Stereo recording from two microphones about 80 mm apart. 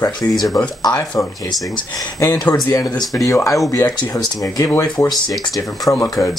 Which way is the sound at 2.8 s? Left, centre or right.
Left.